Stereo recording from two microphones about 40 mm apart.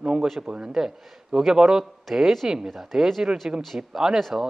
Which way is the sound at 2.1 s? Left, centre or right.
Centre.